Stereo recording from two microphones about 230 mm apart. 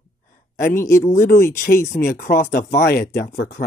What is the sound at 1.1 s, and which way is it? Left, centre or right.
Speech, left.